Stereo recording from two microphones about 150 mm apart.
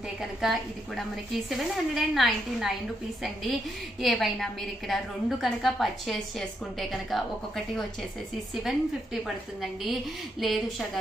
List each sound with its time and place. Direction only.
0.4 s a woman's voice: centre (ahead or behind)
4.0 s a woman's voice: centre (ahead or behind)